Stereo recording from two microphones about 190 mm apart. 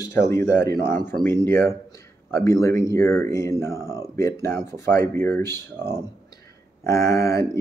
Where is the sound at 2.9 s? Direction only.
15° left (ahead or behind).